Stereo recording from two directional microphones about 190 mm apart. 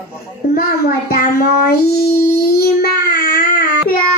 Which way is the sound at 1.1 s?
50° left (ahead or behind).